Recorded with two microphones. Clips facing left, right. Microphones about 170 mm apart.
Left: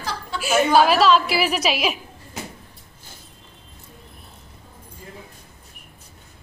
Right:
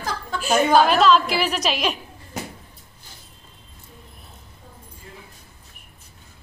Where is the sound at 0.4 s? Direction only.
5° left (ahead or behind).